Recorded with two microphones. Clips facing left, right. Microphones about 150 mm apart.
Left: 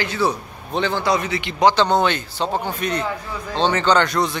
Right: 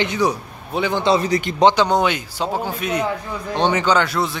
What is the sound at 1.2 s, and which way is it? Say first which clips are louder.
Speech: right 6 dB; 40° right (ahead or behind).